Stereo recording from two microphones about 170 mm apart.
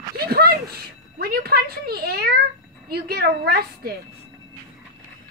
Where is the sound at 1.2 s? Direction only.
65° right (ahead or behind).